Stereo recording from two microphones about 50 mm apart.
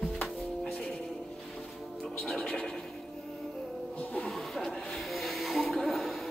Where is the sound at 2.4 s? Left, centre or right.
Left.